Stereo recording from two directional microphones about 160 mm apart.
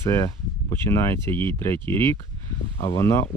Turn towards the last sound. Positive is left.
turn(degrees=15)  # may be behind; listen again after turning